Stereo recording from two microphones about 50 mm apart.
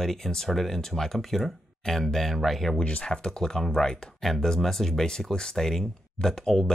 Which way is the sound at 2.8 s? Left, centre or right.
Left.